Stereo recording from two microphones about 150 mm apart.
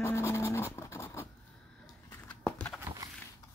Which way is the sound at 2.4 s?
5° left (ahead or behind).